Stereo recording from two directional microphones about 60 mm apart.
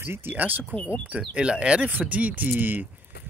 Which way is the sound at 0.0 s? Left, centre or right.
Right.